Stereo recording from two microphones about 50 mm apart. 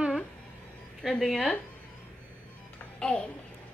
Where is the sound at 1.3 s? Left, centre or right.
Centre.